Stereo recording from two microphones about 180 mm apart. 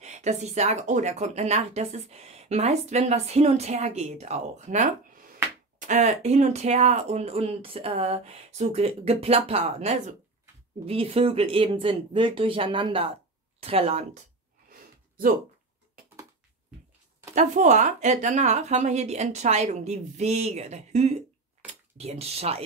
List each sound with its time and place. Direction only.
0.0 s speech: 40° right (ahead or behind)
14.7 s a sound: 50° right (ahead or behind)
17.3 s speech: 40° right (ahead or behind)